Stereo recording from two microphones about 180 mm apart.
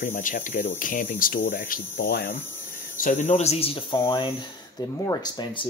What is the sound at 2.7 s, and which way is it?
Speech, 50° left (ahead or behind).